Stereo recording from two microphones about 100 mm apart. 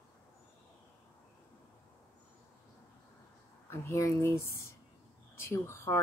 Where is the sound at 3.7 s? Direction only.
25° left (ahead or behind).